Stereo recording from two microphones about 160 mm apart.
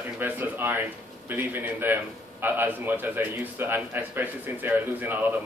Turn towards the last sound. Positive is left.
turn(degrees=-10)  # may be behind; listen again after turning